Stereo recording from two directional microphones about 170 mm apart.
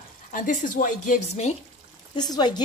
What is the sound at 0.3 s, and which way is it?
A woman's voice, 50° left (ahead or behind).